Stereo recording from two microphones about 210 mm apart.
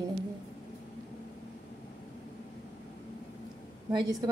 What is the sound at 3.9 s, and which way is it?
Speech, 20° right (ahead or behind).